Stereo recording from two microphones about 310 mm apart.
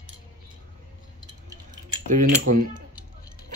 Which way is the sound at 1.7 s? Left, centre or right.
Right.